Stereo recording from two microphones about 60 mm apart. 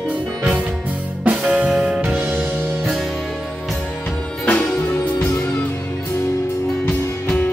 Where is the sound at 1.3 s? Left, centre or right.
Right.